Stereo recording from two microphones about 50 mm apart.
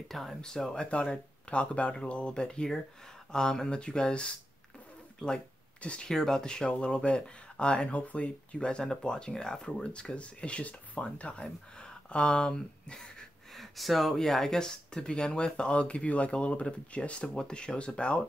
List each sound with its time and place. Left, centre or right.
0.1 s speech: centre
5.2 s a sound: left
6.0 s speech: centre
13.5 s speech: centre; by 18.2 s left